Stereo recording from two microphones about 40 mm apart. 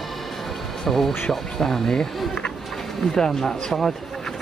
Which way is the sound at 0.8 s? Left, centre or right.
Centre.